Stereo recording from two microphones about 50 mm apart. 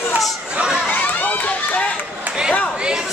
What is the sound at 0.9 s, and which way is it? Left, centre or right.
Run, left.